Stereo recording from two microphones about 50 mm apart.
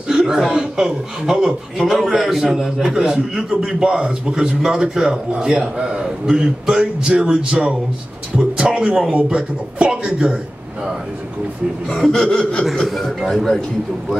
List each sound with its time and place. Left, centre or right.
0.1 s chuckle: centre
0.5 s a man's voice: centre
11.9 s speech: centre
12.3 s speech: centre
12.7 s a man's voice: centre